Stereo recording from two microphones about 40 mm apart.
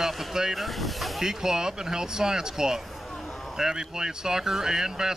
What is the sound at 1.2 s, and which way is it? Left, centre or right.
Speech, centre.